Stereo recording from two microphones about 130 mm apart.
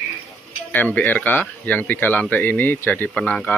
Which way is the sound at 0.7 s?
15° left (ahead or behind).